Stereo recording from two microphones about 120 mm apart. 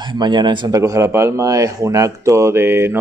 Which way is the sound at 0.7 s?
25° right (ahead or behind).